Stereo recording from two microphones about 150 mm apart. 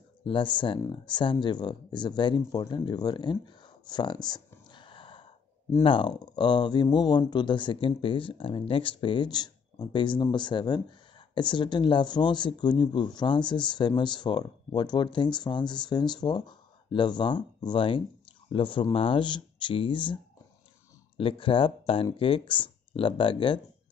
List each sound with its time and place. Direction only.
0.2 s speech: 35° left (ahead or behind)
4.6 s a sound: 35° left (ahead or behind)
5.9 s speech: 30° left (ahead or behind)
21.2 s speech: 35° left (ahead or behind)